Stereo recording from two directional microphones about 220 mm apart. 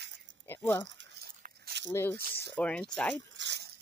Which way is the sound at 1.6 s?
50° right (ahead or behind).